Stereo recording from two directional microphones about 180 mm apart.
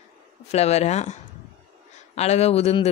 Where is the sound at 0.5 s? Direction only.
35° left (ahead or behind).